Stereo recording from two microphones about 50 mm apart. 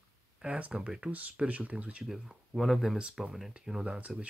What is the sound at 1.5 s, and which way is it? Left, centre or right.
Speech, right.